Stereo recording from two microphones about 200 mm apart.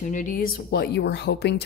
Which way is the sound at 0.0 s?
40° left (ahead or behind).